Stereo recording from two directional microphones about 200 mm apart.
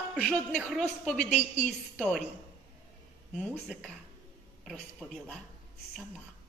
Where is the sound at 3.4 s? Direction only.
5° right (ahead or behind).